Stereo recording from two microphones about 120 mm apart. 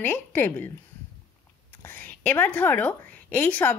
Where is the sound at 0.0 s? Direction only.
20° left (ahead or behind).